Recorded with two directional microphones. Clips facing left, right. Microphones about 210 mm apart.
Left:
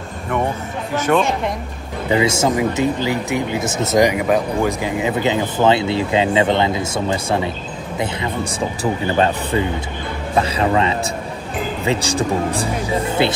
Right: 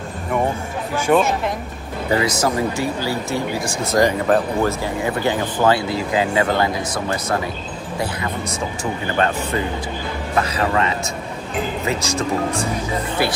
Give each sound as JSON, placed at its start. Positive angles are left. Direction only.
{"t": 1.0, "sound": "a woman's voice", "side_deg": -5}
{"t": 2.1, "sound": "speech", "side_deg": 25}
{"t": 13.2, "sound": "speech", "side_deg": 25}